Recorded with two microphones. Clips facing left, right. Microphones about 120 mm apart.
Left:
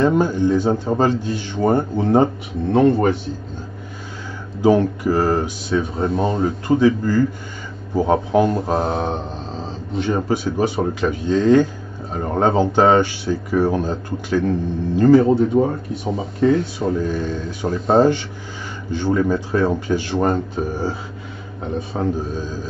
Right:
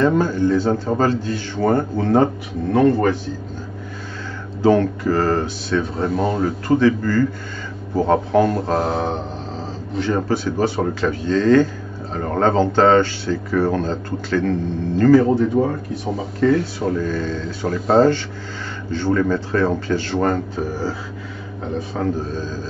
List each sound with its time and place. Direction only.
0.0 s speech: 15° left (ahead or behind)
4.6 s speech: 15° left (ahead or behind)
6.0 s speech: centre (ahead or behind)
6.4 s speech: 15° left (ahead or behind); by 9.0 s centre (ahead or behind)
9.9 s speech: 15° left (ahead or behind)
21.9 s speech: 15° left (ahead or behind)